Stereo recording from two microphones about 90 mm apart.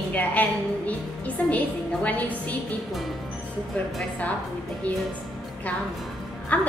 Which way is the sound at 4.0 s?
15° left (ahead or behind).